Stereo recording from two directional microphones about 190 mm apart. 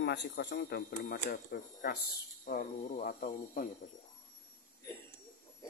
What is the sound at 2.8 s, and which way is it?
Speech, 40° left (ahead or behind).